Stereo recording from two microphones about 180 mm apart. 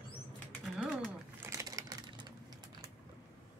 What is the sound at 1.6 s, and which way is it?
Typewriter, 20° right (ahead or behind).